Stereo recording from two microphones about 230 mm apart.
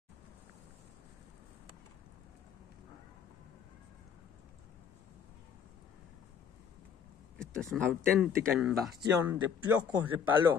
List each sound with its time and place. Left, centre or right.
7.3 s speech: centre
9.3 s speech: centre